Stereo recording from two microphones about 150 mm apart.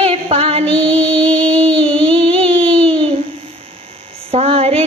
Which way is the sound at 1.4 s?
40° right (ahead or behind).